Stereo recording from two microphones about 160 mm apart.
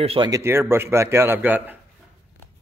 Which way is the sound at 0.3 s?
15° right (ahead or behind).